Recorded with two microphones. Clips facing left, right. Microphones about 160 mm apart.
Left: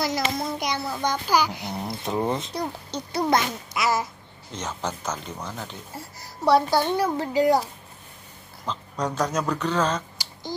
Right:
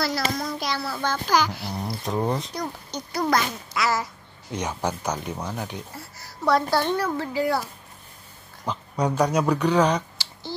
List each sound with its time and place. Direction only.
0.0 s a child's voice: 20° left (ahead or behind)
2.0 s speech: centre (ahead or behind)
2.5 s a child's voice: 30° left (ahead or behind)
4.5 s speech: 10° right (ahead or behind)
5.9 s a woman's voice: 15° left (ahead or behind)
8.6 s speech: 10° right (ahead or behind)